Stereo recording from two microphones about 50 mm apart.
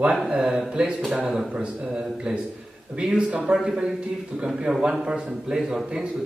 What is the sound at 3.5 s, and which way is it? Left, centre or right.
A man's voice, centre.